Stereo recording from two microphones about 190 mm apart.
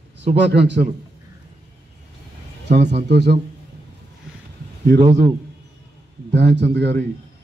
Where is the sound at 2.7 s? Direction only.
60° right (ahead or behind).